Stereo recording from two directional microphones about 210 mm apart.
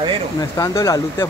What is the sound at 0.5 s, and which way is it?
Speech, 15° left (ahead or behind).